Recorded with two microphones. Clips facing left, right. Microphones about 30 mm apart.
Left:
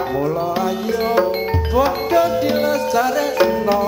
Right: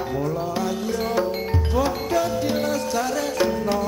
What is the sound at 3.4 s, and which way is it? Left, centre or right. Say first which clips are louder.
Music: left 6 dB; left.